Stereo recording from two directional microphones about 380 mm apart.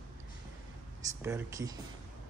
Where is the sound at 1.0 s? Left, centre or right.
Centre.